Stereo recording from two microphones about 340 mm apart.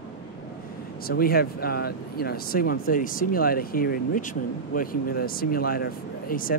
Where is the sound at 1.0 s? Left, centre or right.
Left.